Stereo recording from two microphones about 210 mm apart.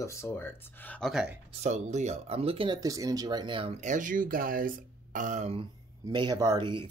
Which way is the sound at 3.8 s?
35° right (ahead or behind).